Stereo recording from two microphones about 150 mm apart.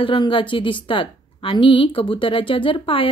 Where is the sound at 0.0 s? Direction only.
35° left (ahead or behind).